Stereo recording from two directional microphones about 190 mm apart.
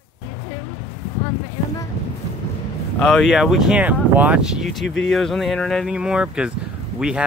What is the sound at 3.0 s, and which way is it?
Speech, centre (ahead or behind).